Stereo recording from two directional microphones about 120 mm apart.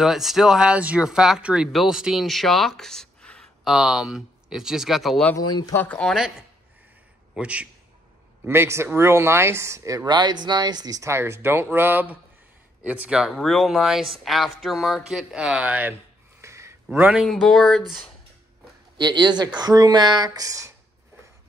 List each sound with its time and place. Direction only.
0.0 s speech: centre (ahead or behind)
3.7 s speech: 5° right (ahead or behind)
5.4 s speech: 35° left (ahead or behind)
5.8 s speech: 10° left (ahead or behind)
7.3 s speech: 10° right (ahead or behind)
8.5 s speech: 20° right (ahead or behind)
13.3 s speech: 5° left (ahead or behind)
16.3 s a sound: 25° right (ahead or behind)
16.9 s speech: 10° right (ahead or behind)
17.3 s speech: centre (ahead or behind)
18.9 s speech: 35° right (ahead or behind)